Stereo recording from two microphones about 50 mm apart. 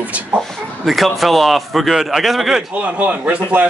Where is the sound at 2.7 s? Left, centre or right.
Right.